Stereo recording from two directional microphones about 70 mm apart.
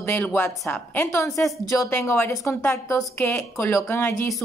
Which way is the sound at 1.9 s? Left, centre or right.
Left.